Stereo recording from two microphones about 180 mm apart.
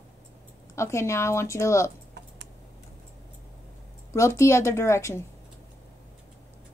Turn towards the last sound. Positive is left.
turn(degrees=15)  # may be behind; listen again after turning